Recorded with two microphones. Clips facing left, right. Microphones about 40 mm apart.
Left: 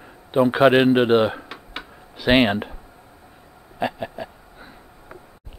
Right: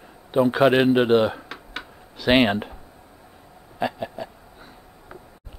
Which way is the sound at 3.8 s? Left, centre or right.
Centre.